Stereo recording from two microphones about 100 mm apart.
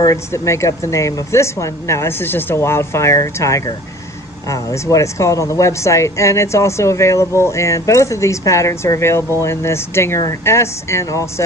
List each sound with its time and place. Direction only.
0.0 s speech: 30° left (ahead or behind)